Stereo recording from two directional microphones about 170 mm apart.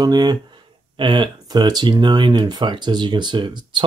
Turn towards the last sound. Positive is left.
turn(degrees=-30)  # may be behind; listen again after turning